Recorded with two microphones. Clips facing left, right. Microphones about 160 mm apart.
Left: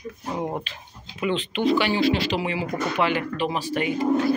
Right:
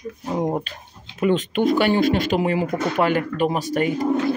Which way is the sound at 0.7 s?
45° right (ahead or behind).